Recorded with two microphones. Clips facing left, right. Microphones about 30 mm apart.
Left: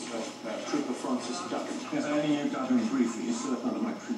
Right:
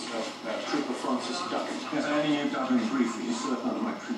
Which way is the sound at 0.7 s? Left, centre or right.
Right.